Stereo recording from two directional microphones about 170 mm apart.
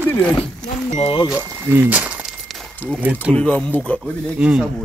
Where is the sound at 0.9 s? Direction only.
35° left (ahead or behind).